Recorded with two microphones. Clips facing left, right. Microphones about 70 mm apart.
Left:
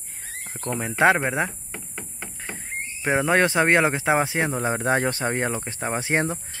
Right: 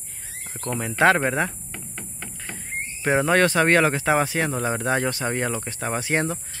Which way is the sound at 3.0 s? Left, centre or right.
Centre.